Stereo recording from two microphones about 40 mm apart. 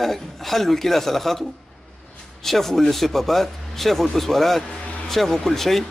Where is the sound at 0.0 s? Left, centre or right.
Centre.